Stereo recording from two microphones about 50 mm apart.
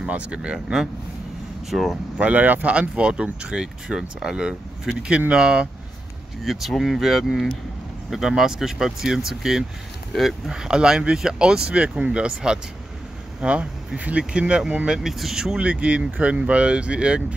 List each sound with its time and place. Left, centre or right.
0.1 s speech: right
1.7 s speech: centre
2.1 s speech: right
6.4 s speech: centre; by 14.8 s right
15.0 s speech: centre; by 17.4 s right